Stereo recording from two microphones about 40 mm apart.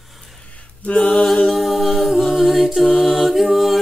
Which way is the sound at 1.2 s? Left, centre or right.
Centre.